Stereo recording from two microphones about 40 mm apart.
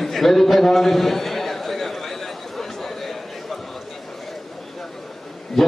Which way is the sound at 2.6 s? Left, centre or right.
Centre.